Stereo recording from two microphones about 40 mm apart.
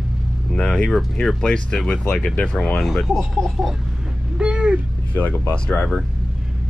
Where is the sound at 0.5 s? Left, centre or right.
Left.